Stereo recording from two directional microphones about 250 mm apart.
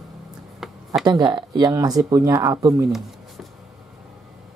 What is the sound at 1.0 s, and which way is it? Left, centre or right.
Speech, centre.